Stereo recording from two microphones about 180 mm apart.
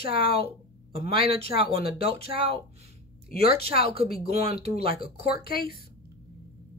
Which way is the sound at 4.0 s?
55° left (ahead or behind).